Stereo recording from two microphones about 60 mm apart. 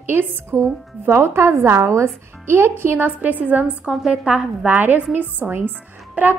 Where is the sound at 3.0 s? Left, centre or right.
Right.